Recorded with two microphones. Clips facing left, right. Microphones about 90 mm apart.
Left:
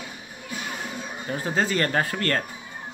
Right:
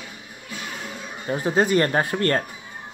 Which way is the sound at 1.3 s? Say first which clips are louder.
Right 5 dB; 25° right (ahead or behind).